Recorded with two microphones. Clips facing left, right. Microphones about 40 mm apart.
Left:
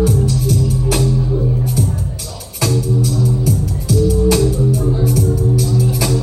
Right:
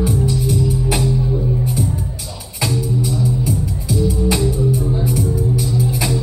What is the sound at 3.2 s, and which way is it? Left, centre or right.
Music, right.